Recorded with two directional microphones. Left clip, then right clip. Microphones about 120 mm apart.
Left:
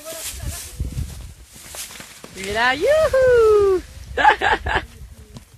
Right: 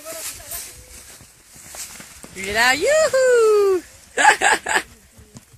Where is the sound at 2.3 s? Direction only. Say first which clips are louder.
Right 2 dB; 30° right (ahead or behind).